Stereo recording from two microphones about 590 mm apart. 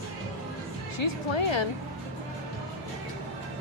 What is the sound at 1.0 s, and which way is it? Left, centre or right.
Speech, left.